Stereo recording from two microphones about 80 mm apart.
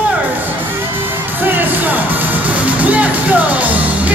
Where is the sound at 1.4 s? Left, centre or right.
Right.